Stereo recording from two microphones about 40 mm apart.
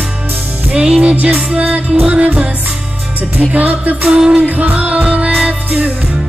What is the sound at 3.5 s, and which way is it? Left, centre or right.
Music, right.